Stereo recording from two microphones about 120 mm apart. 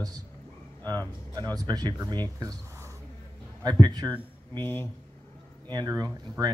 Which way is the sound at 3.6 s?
35° right (ahead or behind).